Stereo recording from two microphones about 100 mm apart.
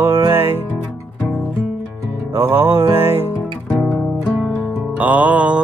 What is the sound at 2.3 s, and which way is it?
Music, 25° right (ahead or behind).